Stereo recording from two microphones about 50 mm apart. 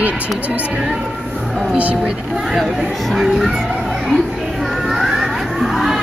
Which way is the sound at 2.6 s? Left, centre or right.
Centre.